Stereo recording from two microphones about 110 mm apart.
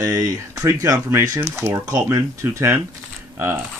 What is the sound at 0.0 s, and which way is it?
Speech, 30° right (ahead or behind).